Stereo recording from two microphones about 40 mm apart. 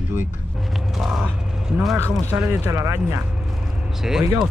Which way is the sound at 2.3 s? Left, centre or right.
Right.